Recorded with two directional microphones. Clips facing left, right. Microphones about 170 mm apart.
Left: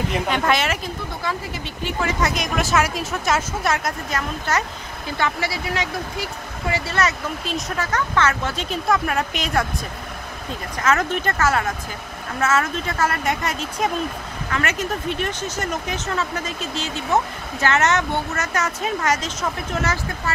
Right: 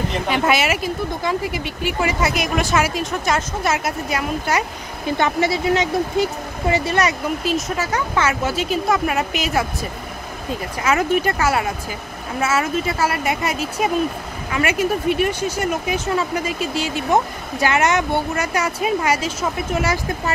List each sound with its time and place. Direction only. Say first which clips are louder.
0.3 s speech: right 4 dB; 5° right (ahead or behind)
7.4 s speech: right 4 dB; 5° right (ahead or behind)
10.8 s speech: right 3 dB; 10° right (ahead or behind)